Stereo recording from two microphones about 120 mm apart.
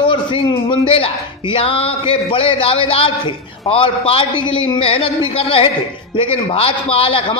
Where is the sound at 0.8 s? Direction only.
50° left (ahead or behind).